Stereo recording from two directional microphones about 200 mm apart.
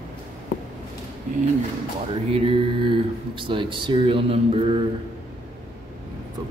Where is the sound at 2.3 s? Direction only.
25° right (ahead or behind).